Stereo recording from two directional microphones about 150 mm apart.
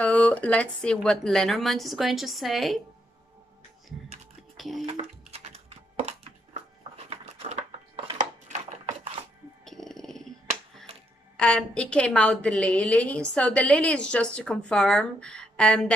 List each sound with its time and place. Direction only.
0.0 s a woman's voice: 10° left (ahead or behind)
4.6 s speech: centre (ahead or behind)
4.8 s music: 40° right (ahead or behind)
7.1 s a sound: 40° right (ahead or behind)
9.7 s a sound: centre (ahead or behind)
11.3 s a woman's voice: 5° left (ahead or behind)